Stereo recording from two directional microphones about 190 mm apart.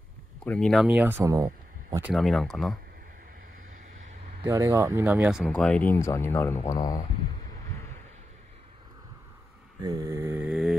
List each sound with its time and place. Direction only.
0.4 s speech: 5° left (ahead or behind)
0.8 s speech: 10° right (ahead or behind)
2.0 s speech: 5° right (ahead or behind)
4.5 s speech: 15° right (ahead or behind); by 7.0 s 20° left (ahead or behind)
9.8 s mantra: 20° right (ahead or behind)